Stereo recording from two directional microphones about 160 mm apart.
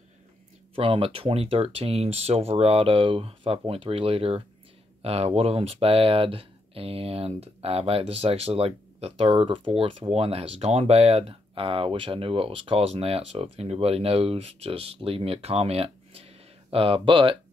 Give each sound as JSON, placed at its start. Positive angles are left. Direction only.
{"t": 0.7, "sound": "speech", "side_deg": -35}